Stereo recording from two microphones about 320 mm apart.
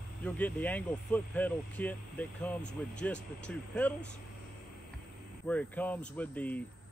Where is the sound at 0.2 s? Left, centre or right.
Centre.